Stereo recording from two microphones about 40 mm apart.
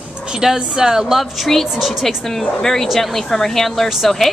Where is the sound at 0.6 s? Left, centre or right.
Centre.